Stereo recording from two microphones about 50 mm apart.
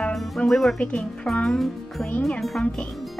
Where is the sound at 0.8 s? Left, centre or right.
Centre.